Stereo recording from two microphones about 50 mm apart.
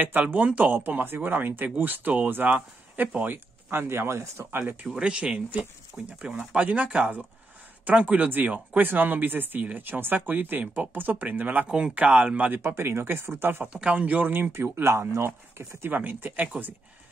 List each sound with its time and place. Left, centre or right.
0.0 s speech: right
4.9 s speech: right
11.7 s speech: centre
12.6 s speech: right
13.7 s speech: right
14.0 s speech: right
14.4 s speech: right
15.2 s speech: right
15.9 s speech: right